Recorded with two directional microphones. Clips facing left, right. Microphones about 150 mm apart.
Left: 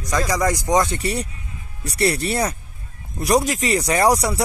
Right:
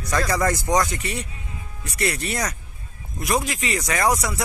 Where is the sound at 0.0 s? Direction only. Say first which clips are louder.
Left 1 dB; 15° left (ahead or behind).